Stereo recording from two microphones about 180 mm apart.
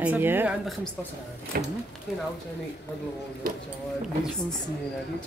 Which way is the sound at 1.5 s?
55° right (ahead or behind).